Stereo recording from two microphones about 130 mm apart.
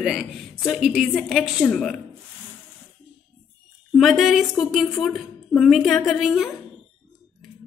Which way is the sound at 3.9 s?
Centre (ahead or behind).